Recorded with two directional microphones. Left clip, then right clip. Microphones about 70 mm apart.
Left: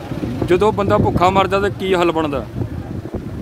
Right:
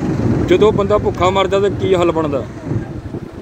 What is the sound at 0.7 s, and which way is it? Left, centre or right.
Speech, left.